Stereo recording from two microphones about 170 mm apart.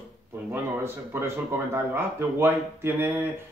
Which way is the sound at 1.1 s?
15° right (ahead or behind).